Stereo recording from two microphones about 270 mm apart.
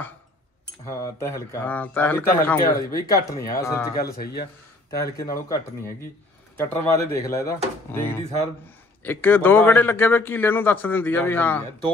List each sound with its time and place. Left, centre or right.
1.1 s a man's voice: centre
2.6 s speech: left
3.3 s a man's voice: centre
4.0 s speech: left
4.9 s a man's voice: centre